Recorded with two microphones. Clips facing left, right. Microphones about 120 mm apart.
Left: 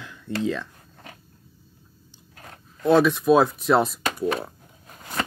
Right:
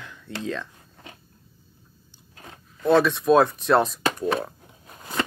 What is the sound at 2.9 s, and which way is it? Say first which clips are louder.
Speech: left 1 dB; 10° left (ahead or behind).